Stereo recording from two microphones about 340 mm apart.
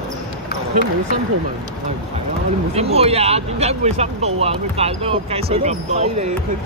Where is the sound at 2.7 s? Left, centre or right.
Centre.